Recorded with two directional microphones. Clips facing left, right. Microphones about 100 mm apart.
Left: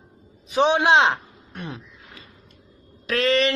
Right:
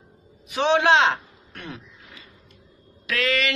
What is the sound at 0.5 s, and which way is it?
A man's voice, 20° left (ahead or behind).